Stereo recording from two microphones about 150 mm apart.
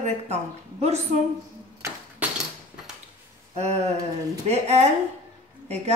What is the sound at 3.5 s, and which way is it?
A woman's voice, 45° right (ahead or behind).